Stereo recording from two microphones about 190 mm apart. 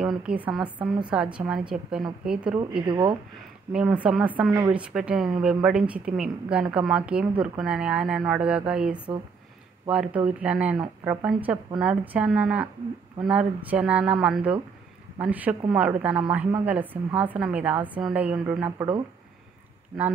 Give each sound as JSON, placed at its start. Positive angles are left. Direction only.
{"t": 0.0, "sound": "a woman's voice", "side_deg": -5}
{"t": 2.9, "sound": "speech", "side_deg": -25}
{"t": 3.7, "sound": "a woman's voice", "side_deg": -5}